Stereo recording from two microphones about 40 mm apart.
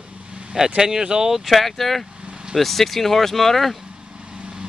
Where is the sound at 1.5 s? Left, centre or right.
Centre.